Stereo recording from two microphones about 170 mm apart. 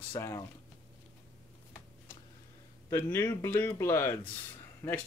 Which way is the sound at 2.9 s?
15° left (ahead or behind).